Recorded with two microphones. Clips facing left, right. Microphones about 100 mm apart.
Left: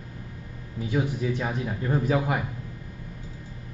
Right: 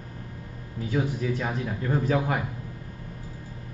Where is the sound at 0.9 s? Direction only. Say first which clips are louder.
Even; 20° left (ahead or behind).